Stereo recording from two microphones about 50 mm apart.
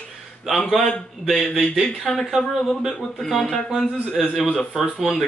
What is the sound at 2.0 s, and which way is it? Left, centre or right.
Speech, centre.